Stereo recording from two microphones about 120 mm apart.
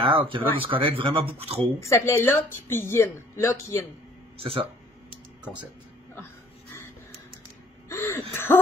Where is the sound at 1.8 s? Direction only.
25° left (ahead or behind).